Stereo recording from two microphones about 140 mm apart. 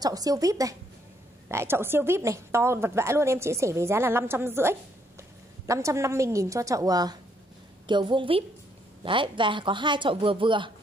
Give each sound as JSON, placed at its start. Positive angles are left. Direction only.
{"t": 0.0, "sound": "a woman's voice", "side_deg": -25}